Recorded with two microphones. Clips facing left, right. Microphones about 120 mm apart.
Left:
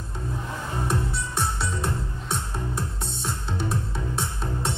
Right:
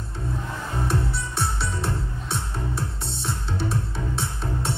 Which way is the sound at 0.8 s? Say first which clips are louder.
Right 1 dB; 45° left (ahead or behind).